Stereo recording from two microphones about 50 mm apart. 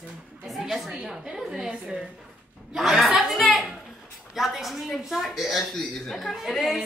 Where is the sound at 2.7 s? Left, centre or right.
Centre.